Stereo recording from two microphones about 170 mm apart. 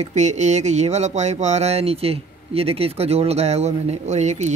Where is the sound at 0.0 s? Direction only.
45° right (ahead or behind).